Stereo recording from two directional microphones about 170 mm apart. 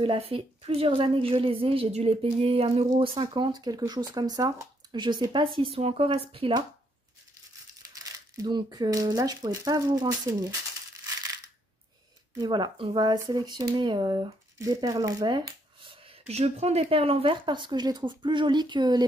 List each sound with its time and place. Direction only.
0.0 s a woman's voice: 30° right (ahead or behind)
7.9 s speech: 20° right (ahead or behind)
12.4 s speech: 25° right (ahead or behind)